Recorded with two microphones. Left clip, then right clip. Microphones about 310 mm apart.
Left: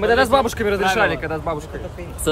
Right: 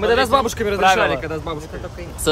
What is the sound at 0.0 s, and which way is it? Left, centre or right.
Speech, centre.